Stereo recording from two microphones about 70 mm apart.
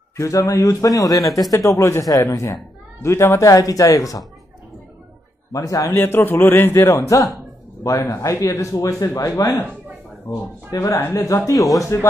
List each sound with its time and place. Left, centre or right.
0.2 s a man's voice: left
2.4 s a man's voice: left
5.5 s speech: left
5.9 s a man's voice: left
11.5 s a man's voice: centre